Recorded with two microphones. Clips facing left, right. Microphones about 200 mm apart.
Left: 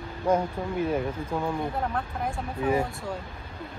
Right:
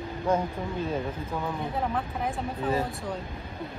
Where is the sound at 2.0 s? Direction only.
Centre (ahead or behind).